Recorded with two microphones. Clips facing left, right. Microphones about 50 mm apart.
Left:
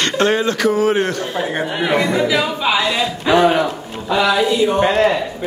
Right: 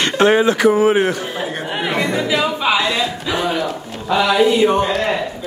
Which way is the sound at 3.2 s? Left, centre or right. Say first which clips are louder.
Left 8 dB; left.